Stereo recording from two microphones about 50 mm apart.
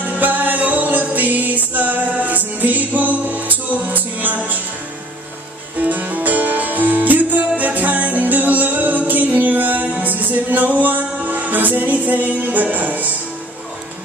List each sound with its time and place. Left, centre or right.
0.0 s music: right
5.8 s music: right